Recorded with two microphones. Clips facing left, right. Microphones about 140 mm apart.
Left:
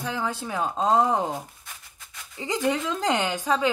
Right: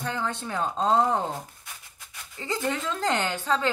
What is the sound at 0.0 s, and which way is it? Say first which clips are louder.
Speech: left 1 dB; 10° left (ahead or behind).